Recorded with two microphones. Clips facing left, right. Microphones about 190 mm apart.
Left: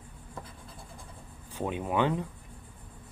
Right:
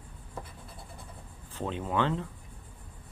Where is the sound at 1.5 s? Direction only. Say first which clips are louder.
Left 2 dB; 10° left (ahead or behind).